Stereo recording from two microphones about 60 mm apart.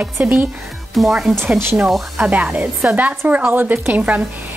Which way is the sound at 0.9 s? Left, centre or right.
Centre.